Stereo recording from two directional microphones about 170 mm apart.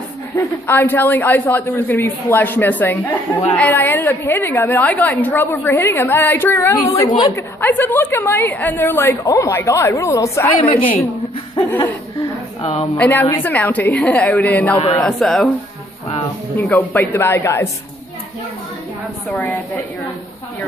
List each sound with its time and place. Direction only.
0.4 s a woman's voice: 10° left (ahead or behind)
7.6 s a woman's voice: 10° left (ahead or behind)
12.8 s a woman's voice: 15° left (ahead or behind)
16.6 s a woman's voice: 10° left (ahead or behind)
19.3 s a woman's voice: 10° left (ahead or behind)